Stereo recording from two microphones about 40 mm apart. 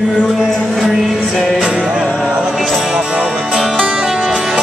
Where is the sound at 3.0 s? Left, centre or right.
Right.